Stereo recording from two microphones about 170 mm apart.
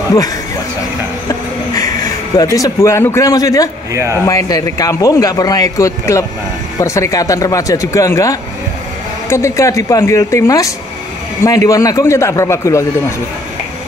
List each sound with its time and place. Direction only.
2.3 s a man's voice: 20° left (ahead or behind)
3.9 s speech: 15° right (ahead or behind)
4.3 s a man's voice: 20° left (ahead or behind)